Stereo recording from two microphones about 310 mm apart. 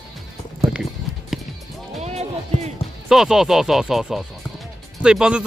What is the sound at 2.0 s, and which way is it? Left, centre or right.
Music, right.